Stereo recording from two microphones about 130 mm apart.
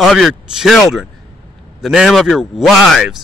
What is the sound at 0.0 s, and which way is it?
A man's voice, centre (ahead or behind).